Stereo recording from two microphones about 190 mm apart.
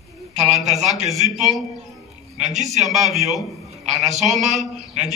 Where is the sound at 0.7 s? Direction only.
35° right (ahead or behind).